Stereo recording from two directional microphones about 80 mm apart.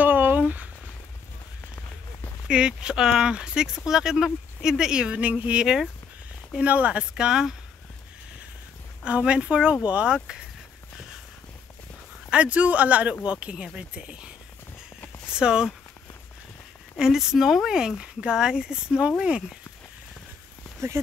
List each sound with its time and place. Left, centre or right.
0.0 s a sound: right
2.4 s speech: centre
9.0 s speech: centre
12.3 s speech: centre
15.3 s speech: centre
17.0 s speech: centre